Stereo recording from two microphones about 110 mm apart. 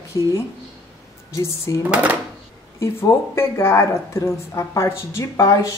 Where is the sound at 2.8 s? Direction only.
25° left (ahead or behind).